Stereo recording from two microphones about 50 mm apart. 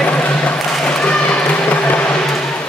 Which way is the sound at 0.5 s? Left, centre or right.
Centre.